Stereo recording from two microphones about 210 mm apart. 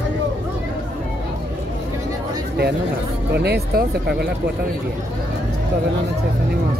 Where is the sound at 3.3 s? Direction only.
50° right (ahead or behind).